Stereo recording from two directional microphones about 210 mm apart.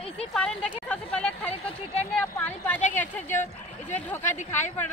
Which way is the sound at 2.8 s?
35° left (ahead or behind).